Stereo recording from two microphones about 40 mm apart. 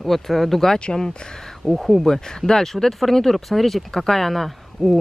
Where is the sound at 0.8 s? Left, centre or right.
Left.